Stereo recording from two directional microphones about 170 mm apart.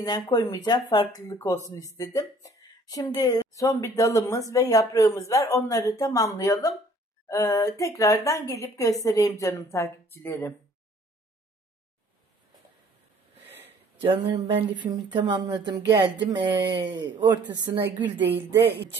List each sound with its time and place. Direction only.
0.0 s speech: 20° left (ahead or behind)
14.0 s speech: 30° right (ahead or behind)
18.5 s a woman's voice: 75° right (ahead or behind)